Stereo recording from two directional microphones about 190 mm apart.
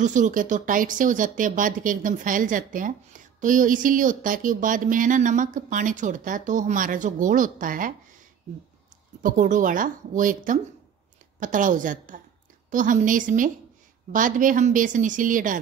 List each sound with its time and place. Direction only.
0.0 s speech: 40° right (ahead or behind)
9.2 s speech: 45° right (ahead or behind)